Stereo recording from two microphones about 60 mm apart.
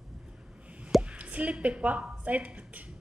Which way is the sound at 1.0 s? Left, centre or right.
Right.